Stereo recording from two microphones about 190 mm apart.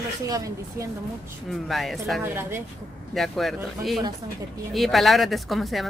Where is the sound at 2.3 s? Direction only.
10° right (ahead or behind).